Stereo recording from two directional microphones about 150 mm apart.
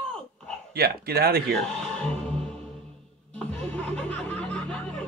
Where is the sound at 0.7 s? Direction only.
90° right.